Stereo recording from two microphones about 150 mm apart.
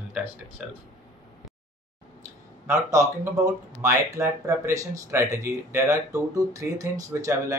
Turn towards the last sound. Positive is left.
turn(degrees=-20)  # may be behind; listen again after turning